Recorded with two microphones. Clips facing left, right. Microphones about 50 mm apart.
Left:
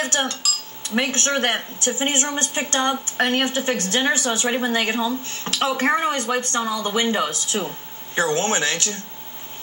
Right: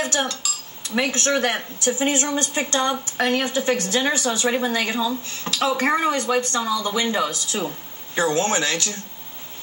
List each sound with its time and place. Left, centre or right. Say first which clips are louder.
0.0 s speech: even; left
6.1 s speech: right 1 dB; left